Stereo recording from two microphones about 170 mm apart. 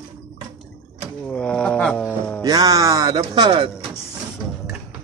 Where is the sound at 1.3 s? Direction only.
5° left (ahead or behind).